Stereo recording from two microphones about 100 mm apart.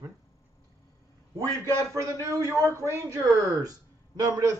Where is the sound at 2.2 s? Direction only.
30° right (ahead or behind).